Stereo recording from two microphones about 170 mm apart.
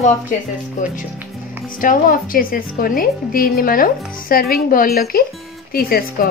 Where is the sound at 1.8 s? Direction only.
55° left (ahead or behind).